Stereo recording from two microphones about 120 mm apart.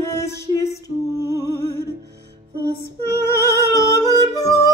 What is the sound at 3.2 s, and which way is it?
Humming, 25° left (ahead or behind).